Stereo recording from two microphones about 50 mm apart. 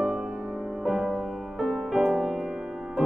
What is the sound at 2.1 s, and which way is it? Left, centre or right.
Music, centre.